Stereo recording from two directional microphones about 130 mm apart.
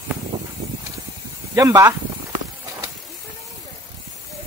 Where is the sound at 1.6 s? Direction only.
25° right (ahead or behind).